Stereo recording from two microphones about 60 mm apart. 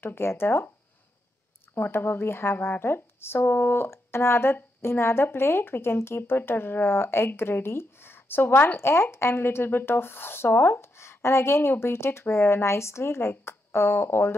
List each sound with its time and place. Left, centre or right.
0.0 s speech: left
1.8 s speech: left